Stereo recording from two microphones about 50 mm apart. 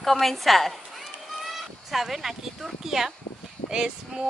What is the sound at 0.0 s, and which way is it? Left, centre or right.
Speech, centre.